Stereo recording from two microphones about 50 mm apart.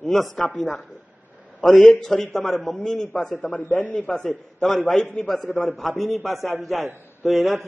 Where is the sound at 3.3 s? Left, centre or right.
Left.